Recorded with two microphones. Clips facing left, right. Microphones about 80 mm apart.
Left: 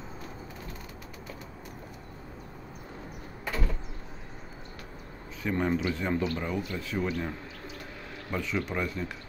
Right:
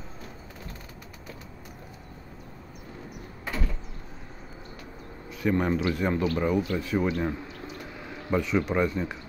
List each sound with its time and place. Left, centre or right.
5.4 s a man's voice: centre